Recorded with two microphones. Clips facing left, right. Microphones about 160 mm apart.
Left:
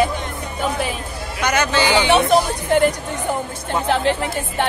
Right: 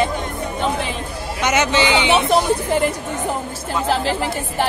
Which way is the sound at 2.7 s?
Centre (ahead or behind).